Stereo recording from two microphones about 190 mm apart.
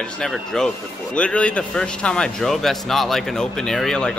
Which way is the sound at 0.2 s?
Centre (ahead or behind).